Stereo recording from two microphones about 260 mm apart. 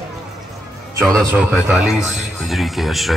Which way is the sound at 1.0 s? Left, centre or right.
Centre.